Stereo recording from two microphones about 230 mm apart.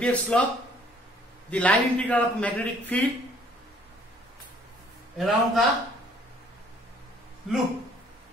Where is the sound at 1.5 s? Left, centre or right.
Centre.